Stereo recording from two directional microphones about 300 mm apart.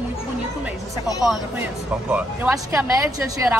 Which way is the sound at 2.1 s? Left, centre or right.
Centre.